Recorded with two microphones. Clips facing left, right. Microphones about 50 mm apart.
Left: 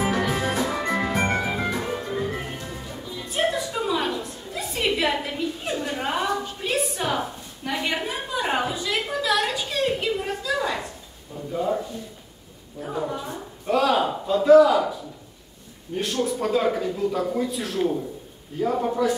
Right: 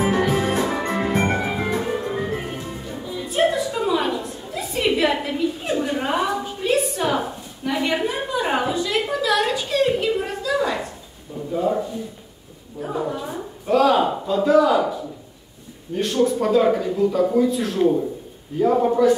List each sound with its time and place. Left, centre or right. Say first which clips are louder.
0.2 s music: right 4 dB; centre
0.5 s music: right 2 dB; right
1.4 s music: right 3 dB; centre
7.6 s a sound: right 5 dB; centre
12.8 s a sound: right 3 dB; centre
18.6 s a man's voice: right 6 dB; centre